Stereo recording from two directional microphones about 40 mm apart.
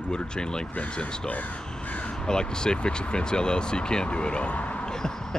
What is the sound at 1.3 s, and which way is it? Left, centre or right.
Crow, left.